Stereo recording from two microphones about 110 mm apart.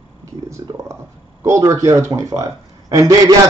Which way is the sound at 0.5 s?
25° right (ahead or behind).